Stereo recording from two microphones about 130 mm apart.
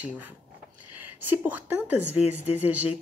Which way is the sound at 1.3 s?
15° right (ahead or behind).